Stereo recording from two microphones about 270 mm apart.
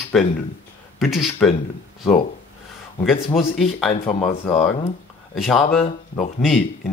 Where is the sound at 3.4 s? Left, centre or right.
Centre.